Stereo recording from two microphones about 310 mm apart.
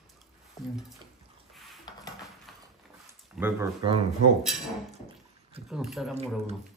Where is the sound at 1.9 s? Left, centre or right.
Centre.